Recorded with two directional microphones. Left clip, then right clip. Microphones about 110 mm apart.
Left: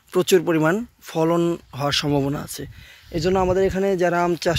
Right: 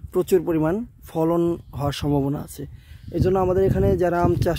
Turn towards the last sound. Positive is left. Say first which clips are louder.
# left 1 dB
turn(degrees=-50)  # may be behind; listen again after turning